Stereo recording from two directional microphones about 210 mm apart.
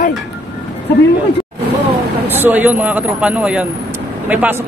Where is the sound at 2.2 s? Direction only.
10° right (ahead or behind).